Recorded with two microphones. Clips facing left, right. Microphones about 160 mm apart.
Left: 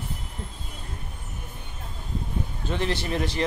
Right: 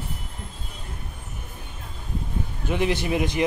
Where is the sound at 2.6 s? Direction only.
15° right (ahead or behind).